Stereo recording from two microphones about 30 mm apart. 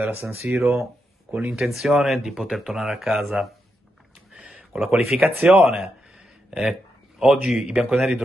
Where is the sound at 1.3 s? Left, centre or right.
Right.